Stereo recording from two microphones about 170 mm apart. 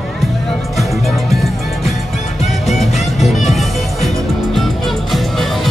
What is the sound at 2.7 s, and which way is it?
Music, centre (ahead or behind).